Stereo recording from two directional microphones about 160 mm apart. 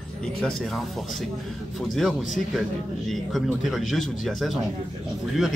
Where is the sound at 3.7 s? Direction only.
Centre (ahead or behind).